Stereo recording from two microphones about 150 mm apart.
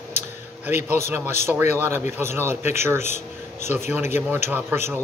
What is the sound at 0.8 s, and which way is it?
Speech, 15° right (ahead or behind).